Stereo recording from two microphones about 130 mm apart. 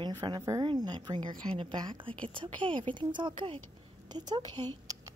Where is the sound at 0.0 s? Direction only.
30° right (ahead or behind).